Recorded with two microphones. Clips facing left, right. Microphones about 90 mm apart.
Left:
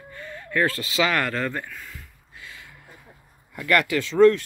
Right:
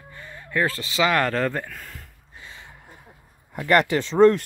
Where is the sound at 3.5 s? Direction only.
35° right (ahead or behind).